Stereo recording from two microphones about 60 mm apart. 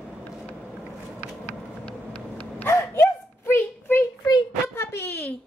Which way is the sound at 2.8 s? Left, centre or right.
Left.